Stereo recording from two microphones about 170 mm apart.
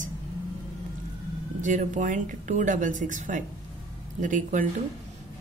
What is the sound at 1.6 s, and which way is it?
Speech, 45° right (ahead or behind).